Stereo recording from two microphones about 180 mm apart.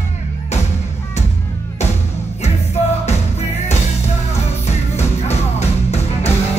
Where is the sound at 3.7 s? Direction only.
40° left (ahead or behind).